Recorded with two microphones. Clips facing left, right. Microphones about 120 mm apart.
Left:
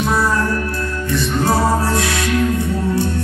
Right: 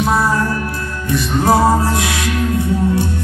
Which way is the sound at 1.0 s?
25° left (ahead or behind).